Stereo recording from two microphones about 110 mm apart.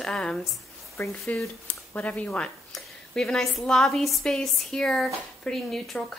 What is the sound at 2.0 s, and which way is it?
A woman's voice, 10° left (ahead or behind).